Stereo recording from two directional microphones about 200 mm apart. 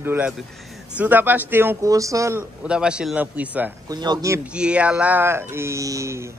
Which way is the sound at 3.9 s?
20° right (ahead or behind).